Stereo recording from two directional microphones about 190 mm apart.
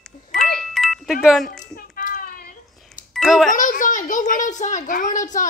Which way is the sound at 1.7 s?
45° left (ahead or behind).